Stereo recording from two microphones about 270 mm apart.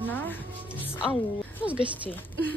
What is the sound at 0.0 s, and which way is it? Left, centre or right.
Music, centre.